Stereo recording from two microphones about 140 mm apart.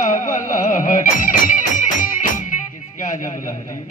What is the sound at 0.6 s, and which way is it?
Music, 70° left (ahead or behind).